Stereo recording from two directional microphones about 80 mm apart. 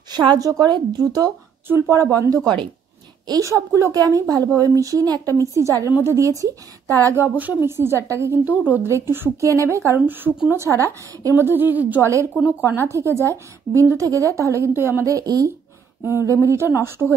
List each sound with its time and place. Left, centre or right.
0.1 s a woman's voice: right
1.7 s a woman's voice: right
7.2 s a woman's voice: right
8.5 s a woman's voice: right
8.8 s a woman's voice: right
9.9 s a woman's voice: right
10.5 s a woman's voice: right; by 12.6 s centre
12.9 s a woman's voice: right
16.0 s a woman's voice: right